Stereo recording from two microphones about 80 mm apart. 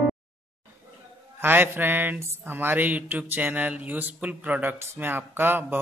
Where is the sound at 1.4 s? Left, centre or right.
Right.